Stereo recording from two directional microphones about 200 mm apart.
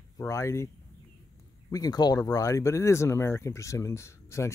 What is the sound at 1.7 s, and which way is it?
Speech, 20° left (ahead or behind).